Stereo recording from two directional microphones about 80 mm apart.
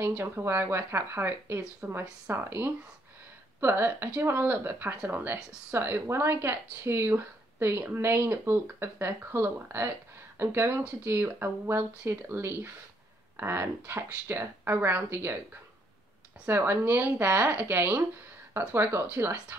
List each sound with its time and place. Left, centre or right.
0.0 s speech: right
16.4 s speech: right